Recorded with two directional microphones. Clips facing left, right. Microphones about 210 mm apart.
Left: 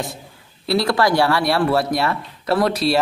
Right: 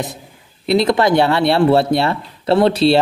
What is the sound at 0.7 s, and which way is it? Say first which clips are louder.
Speech: right 4 dB; 20° right (ahead or behind).